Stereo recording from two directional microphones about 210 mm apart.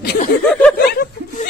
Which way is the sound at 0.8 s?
45° left (ahead or behind).